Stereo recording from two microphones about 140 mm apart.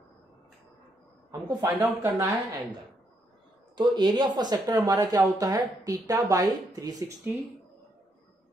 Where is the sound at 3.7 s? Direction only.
30° right (ahead or behind).